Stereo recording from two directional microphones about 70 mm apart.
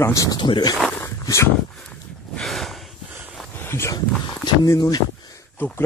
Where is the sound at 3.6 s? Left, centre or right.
Left.